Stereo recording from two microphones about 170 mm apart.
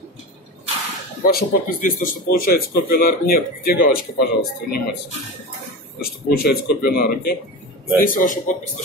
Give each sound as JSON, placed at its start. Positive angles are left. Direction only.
{"t": 1.2, "sound": "speech", "side_deg": 60}
{"t": 5.9, "sound": "speech", "side_deg": 65}
{"t": 8.0, "sound": "a man's voice", "side_deg": 55}